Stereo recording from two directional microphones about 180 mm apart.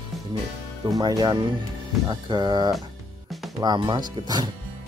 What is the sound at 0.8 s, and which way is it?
Speech, 20° right (ahead or behind).